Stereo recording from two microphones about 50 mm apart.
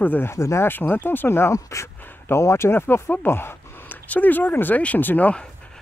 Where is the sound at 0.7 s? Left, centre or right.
Left.